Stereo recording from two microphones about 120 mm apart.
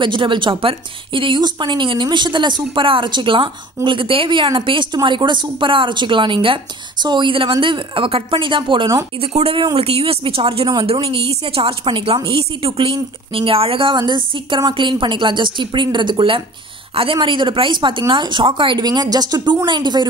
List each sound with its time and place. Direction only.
0.0 s a woman's voice: 40° right (ahead or behind)
9.2 s a woman's voice: 55° right (ahead or behind); by 20.1 s 40° right (ahead or behind)